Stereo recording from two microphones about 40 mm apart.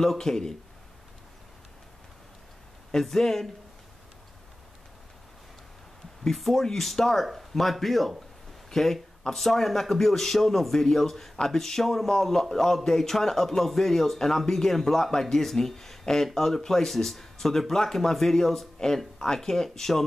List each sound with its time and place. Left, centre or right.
0.0 s a man's voice: centre
3.0 s a man's voice: centre
6.2 s a man's voice: centre